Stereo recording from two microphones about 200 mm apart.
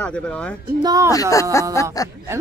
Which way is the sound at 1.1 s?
15° left (ahead or behind).